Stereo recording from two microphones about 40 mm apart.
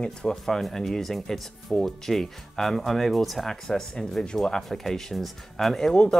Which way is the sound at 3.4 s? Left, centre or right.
Centre.